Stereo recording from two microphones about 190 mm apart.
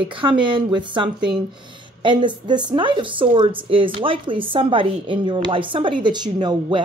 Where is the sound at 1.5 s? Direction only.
25° right (ahead or behind).